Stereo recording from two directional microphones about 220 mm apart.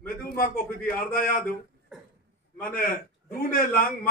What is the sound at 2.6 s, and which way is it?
A man's voice, 40° left (ahead or behind).